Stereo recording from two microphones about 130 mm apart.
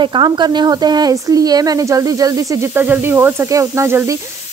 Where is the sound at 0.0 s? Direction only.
35° right (ahead or behind).